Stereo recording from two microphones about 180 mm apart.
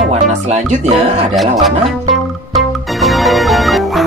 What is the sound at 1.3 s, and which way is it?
Speech, centre (ahead or behind).